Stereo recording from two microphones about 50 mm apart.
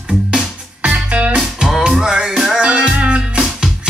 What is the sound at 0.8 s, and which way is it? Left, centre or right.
Music, right.